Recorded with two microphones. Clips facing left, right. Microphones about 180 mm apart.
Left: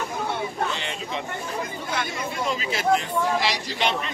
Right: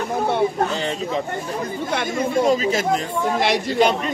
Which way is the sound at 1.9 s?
55° right (ahead or behind).